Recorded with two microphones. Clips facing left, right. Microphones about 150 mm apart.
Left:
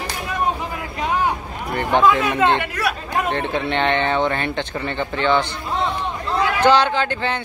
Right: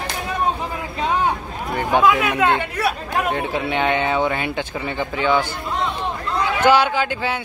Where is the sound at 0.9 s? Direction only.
25° right (ahead or behind).